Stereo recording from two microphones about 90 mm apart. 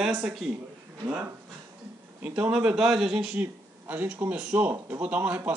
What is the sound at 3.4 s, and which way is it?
A man's voice, 20° right (ahead or behind).